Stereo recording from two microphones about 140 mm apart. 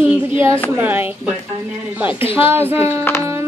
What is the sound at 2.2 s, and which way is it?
Speech, 40° left (ahead or behind).